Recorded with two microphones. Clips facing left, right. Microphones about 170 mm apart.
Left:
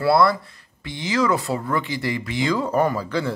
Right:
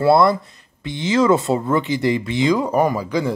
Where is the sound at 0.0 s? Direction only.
20° right (ahead or behind).